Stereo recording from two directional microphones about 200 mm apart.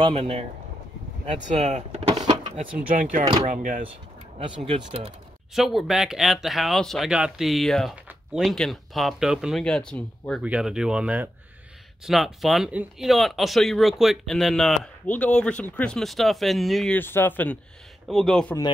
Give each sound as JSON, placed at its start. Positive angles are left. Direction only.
{"t": 0.0, "sound": "speech", "side_deg": -30}
{"t": 4.6, "sound": "speech", "side_deg": -30}
{"t": 5.5, "sound": "speech", "side_deg": 0}